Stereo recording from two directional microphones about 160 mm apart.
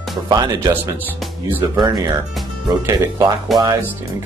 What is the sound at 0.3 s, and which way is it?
Speech, 25° right (ahead or behind).